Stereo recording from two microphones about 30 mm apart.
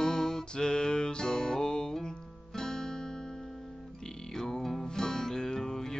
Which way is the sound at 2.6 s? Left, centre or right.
Centre.